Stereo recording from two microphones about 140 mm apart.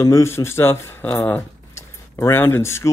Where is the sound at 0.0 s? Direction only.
20° left (ahead or behind).